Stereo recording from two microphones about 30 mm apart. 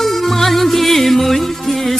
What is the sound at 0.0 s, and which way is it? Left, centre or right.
Music, centre.